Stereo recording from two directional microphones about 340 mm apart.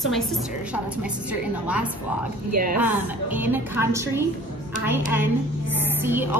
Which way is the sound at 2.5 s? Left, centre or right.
Right.